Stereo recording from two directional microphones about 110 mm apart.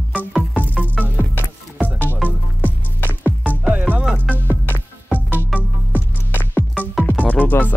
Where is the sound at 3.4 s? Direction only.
15° right (ahead or behind).